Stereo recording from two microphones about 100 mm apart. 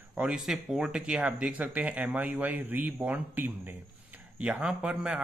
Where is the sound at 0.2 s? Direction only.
5° right (ahead or behind).